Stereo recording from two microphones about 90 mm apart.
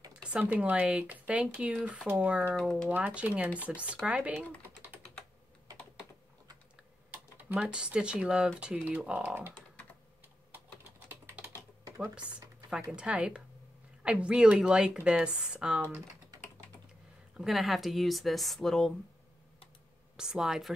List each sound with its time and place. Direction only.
0.3 s speech: 15° right (ahead or behind)
7.3 s typing: 15° right (ahead or behind)
7.6 s speech: 10° right (ahead or behind)
12.9 s speech: 10° right (ahead or behind)
17.4 s speech: 5° right (ahead or behind)
20.2 s speech: 5° right (ahead or behind)